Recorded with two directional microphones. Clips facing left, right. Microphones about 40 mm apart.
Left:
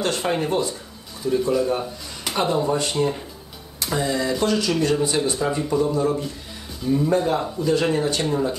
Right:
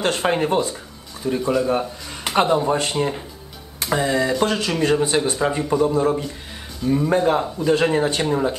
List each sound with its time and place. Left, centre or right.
0.0 s speech: right
1.7 s a sound: right
2.5 s speech: right
4.5 s speech: right
5.9 s speech: right
6.8 s speech: centre
7.2 s speech: right